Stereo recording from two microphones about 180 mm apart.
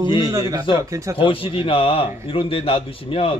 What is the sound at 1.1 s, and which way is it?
Speech, 30° left (ahead or behind).